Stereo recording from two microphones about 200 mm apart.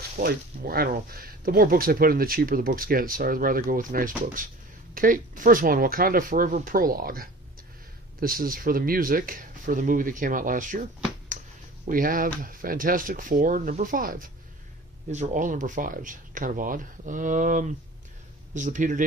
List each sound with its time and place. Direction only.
0.2 s speech: 50° right (ahead or behind)